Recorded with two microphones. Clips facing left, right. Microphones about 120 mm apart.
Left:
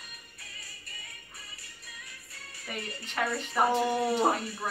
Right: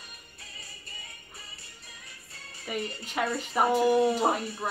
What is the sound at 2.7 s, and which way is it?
Speech, 10° right (ahead or behind).